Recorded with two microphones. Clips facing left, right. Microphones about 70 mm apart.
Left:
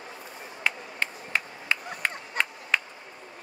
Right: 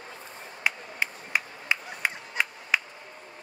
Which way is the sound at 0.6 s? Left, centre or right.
Centre.